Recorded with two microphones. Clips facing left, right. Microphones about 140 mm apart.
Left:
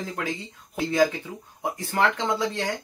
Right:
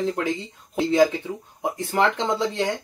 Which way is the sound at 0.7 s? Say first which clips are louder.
Right 4 dB; 25° right (ahead or behind).